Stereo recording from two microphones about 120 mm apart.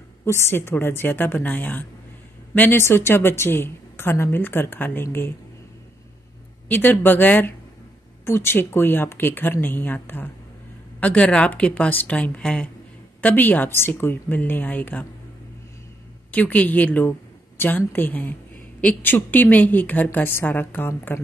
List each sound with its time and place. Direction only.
0.2 s a woman's voice: 20° left (ahead or behind)
6.7 s a woman's voice: 15° left (ahead or behind)
16.3 s a woman's voice: 15° left (ahead or behind)